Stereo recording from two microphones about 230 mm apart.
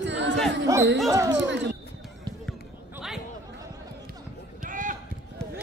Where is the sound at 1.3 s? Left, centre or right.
Right.